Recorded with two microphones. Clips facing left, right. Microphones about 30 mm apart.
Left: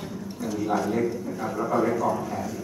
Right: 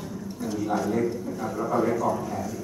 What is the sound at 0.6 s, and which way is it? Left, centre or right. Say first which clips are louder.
A man's voice: left 1 dB; left.